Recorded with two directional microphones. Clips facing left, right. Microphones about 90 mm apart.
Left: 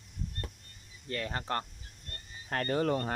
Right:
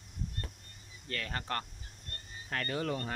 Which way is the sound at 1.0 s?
20° left (ahead or behind).